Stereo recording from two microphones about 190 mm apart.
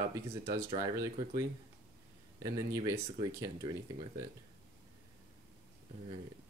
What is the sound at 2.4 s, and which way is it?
Speech, 20° right (ahead or behind).